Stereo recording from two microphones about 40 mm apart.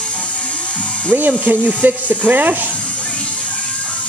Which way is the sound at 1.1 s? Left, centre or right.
Right.